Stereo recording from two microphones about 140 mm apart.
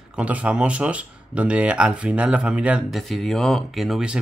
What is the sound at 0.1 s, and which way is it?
Speech, 10° right (ahead or behind).